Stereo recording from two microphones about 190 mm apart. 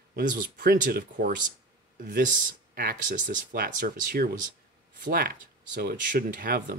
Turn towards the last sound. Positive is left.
turn(degrees=-50)  # may be behind; listen again after turning